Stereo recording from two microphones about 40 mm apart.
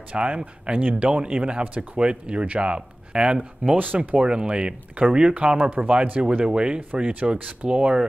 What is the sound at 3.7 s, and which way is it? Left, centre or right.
Speech, right.